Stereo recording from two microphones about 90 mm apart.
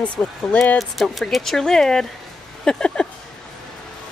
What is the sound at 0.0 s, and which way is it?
Speech, 15° left (ahead or behind).